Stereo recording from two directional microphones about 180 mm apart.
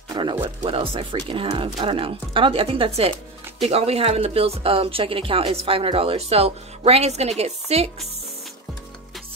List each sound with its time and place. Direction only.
0.1 s music: 25° right (ahead or behind)
0.7 s speech: 30° right (ahead or behind)